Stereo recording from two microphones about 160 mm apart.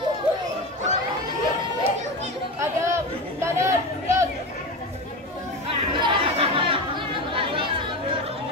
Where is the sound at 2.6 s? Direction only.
15° right (ahead or behind).